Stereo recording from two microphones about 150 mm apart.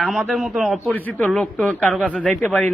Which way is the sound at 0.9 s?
10° left (ahead or behind).